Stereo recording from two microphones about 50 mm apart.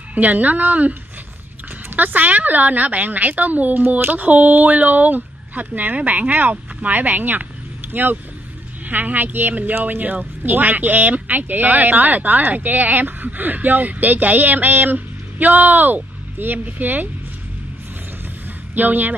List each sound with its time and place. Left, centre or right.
0.1 s speech: right
18.8 s speech: right